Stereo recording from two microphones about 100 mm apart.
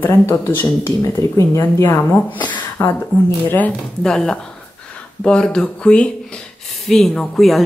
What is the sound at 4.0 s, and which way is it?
A woman's voice, 5° left (ahead or behind).